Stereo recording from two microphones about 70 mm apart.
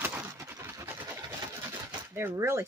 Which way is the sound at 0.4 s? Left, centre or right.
Right.